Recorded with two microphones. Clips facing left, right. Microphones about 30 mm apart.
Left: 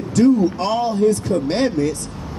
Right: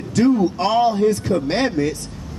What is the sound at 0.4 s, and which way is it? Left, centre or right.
Speech, centre.